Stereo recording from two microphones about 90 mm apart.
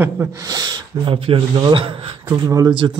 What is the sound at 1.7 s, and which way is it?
Speech, 80° right.